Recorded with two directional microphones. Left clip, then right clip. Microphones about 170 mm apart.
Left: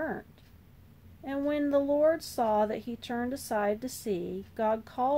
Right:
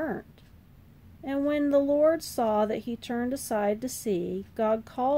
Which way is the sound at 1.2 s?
40° right (ahead or behind).